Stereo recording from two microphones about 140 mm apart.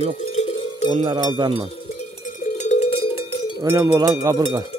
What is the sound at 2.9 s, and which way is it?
Cowbell, 40° left (ahead or behind).